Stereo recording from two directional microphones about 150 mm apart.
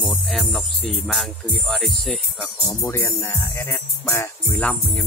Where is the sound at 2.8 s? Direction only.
20° left (ahead or behind).